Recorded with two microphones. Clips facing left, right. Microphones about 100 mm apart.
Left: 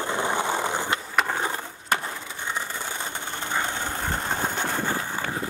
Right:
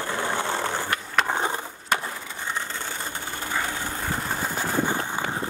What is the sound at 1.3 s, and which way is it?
Skateboard, 25° right (ahead or behind).